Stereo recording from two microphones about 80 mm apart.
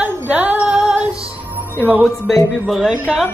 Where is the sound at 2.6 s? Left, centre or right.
Centre.